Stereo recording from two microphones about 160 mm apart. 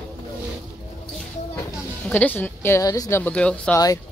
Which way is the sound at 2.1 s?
10° left (ahead or behind).